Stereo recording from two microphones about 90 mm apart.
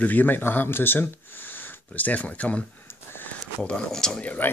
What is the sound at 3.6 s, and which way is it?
Speech, 10° left (ahead or behind).